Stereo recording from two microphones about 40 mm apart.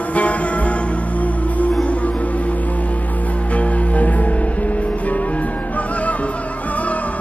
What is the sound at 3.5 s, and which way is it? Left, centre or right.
Music, left.